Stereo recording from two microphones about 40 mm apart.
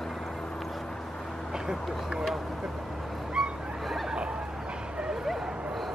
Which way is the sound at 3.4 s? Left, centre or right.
Centre.